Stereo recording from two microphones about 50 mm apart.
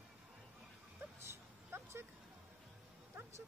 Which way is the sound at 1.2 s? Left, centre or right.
Right.